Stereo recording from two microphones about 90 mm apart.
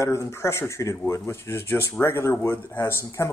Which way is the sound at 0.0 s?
30° left (ahead or behind).